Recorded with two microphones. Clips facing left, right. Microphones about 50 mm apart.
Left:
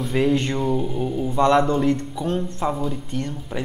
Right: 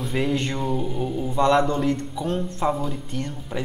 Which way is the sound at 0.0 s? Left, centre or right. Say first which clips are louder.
Left 4 dB; centre.